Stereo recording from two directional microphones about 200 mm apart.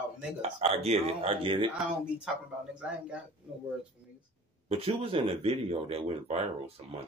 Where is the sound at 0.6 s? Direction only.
30° right (ahead or behind).